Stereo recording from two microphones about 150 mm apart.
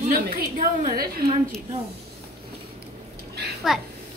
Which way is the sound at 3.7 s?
5° right (ahead or behind).